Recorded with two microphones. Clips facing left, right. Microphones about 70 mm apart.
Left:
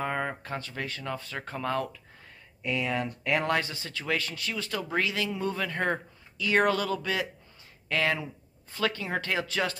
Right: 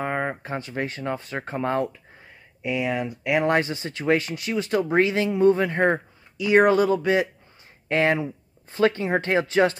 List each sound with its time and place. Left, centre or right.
0.0 s speech: right
2.6 s speech: centre
3.4 s speech: right